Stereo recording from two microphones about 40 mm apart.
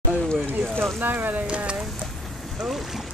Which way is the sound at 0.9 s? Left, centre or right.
Right.